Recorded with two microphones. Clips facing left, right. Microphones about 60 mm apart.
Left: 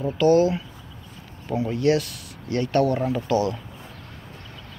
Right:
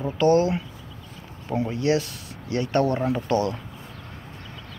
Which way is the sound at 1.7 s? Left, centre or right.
Right.